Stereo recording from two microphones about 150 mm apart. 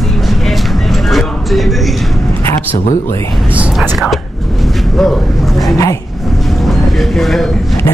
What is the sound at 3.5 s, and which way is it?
Speech, 10° right (ahead or behind).